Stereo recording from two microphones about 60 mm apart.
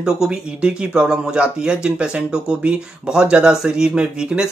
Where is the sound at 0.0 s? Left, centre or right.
Centre.